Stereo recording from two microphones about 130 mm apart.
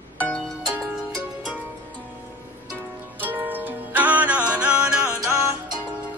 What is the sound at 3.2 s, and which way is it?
Music, 15° right (ahead or behind).